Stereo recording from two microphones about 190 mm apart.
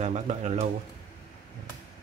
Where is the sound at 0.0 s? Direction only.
35° right (ahead or behind).